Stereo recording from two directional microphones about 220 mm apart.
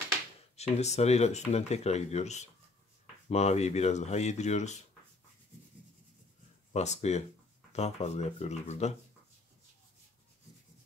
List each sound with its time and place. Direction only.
0.6 s speech: 30° left (ahead or behind)
6.7 s speech: 30° left (ahead or behind)